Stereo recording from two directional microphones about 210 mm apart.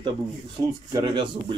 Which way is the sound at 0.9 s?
20° right (ahead or behind).